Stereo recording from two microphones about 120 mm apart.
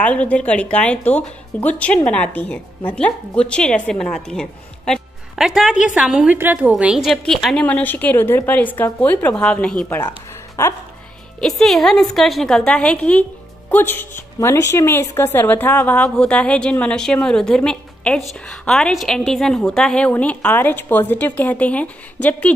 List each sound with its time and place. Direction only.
0.0 s a woman's voice: 10° left (ahead or behind); by 7.1 s 10° right (ahead or behind)
7.1 s a woman's voice: centre (ahead or behind)
7.6 s a woman's voice: 15° left (ahead or behind)
10.0 s a sound: 30° left (ahead or behind)
11.4 s a woman's voice: centre (ahead or behind)